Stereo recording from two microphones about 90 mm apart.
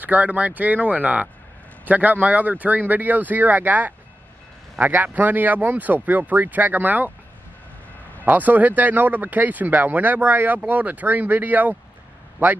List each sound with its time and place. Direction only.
0.0 s speech: 20° right (ahead or behind)
8.3 s speech: 20° right (ahead or behind)